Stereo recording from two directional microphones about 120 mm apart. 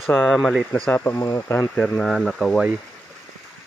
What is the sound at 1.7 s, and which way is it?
Speech, 5° left (ahead or behind).